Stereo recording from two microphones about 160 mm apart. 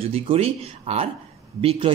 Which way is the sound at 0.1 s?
40° right (ahead or behind).